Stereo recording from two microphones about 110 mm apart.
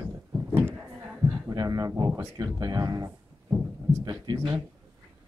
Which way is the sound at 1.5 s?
30° right (ahead or behind).